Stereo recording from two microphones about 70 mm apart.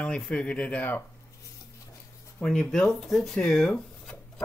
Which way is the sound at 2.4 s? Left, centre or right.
Centre.